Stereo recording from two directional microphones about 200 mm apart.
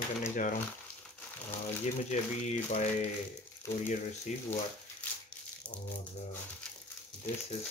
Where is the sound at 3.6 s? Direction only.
15° left (ahead or behind).